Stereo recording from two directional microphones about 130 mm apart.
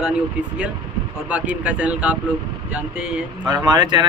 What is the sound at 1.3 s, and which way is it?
Speech, 10° right (ahead or behind).